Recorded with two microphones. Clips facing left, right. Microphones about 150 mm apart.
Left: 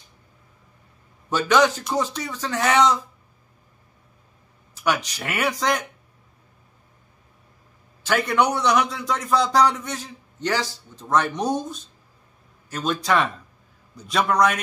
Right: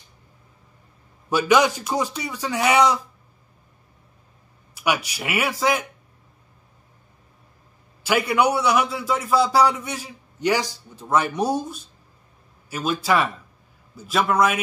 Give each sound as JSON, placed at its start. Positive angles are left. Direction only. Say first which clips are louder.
{"t": 1.3, "sound": "a man's voice", "louder": "right 1 dB", "side_deg": -10}
{"t": 4.7, "sound": "a man's voice", "louder": "even", "side_deg": -10}
{"t": 8.0, "sound": "a man's voice", "louder": "right 1 dB", "side_deg": -10}